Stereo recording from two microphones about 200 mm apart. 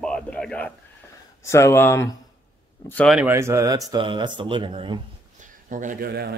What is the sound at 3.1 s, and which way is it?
A man's voice, 10° right (ahead or behind).